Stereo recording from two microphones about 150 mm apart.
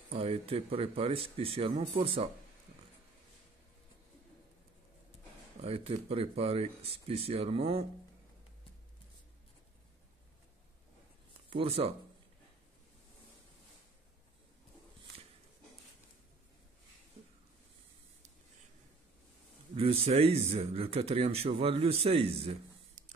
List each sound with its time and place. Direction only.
0.1 s speech: 40° right (ahead or behind)
5.6 s speech: 40° right (ahead or behind)
11.5 s speech: 40° right (ahead or behind)
19.7 s speech: 40° right (ahead or behind)